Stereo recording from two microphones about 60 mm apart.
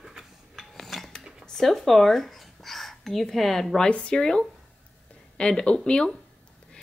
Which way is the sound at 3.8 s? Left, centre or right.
Centre.